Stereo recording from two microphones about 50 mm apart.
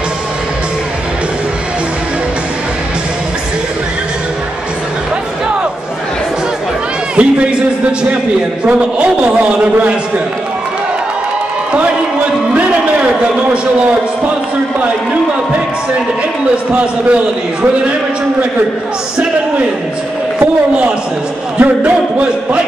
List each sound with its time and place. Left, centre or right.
7.2 s a man's voice: right
12.5 s a sound: right
16.7 s a man's voice: right
20.3 s a man's voice: centre